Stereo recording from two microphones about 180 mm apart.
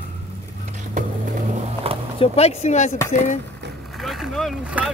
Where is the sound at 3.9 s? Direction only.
Centre (ahead or behind).